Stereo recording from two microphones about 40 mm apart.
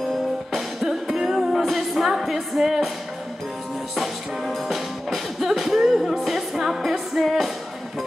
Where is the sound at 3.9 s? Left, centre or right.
Centre.